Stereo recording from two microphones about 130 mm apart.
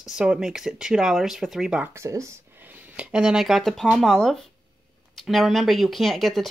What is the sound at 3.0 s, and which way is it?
Speech, 5° right (ahead or behind).